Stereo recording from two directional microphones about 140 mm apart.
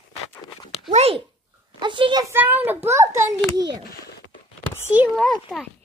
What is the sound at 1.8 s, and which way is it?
Speech, 35° right (ahead or behind).